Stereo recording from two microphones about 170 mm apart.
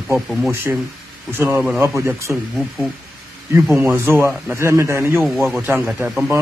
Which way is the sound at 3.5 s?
15° right (ahead or behind).